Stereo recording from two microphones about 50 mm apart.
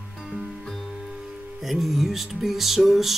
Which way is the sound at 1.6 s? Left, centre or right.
Centre.